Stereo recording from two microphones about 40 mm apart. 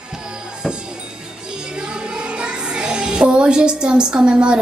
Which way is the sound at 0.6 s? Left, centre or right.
Centre.